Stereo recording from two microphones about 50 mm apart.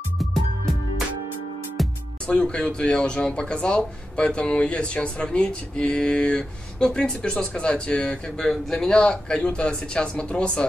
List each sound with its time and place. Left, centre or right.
1.8 s music: centre
2.2 s speech: centre
8.4 s a man's voice: centre